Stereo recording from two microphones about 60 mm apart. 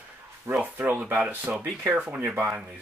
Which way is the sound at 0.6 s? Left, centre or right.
Right.